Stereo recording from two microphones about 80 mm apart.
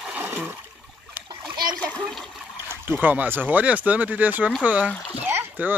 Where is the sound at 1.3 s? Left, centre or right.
Right.